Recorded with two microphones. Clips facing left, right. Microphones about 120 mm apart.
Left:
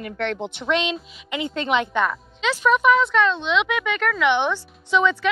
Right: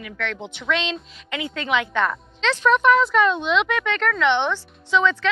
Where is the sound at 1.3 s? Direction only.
25° left (ahead or behind).